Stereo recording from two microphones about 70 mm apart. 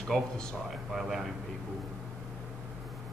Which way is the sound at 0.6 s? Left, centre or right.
Centre.